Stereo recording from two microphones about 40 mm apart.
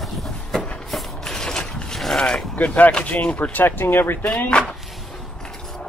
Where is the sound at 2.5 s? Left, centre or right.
Left.